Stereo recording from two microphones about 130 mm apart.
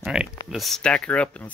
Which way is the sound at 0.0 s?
5° right (ahead or behind).